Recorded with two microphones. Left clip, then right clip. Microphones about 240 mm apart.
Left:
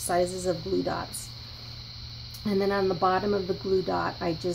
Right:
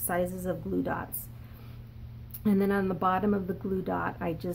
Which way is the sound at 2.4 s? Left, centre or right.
Right.